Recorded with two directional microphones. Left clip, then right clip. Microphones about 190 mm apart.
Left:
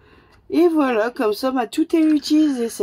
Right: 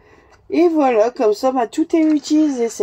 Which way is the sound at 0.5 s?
35° left (ahead or behind).